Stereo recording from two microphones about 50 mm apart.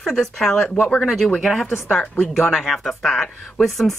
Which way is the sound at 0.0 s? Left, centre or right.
Centre.